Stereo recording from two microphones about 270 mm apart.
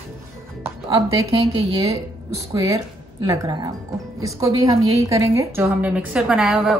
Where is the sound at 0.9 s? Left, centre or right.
Centre.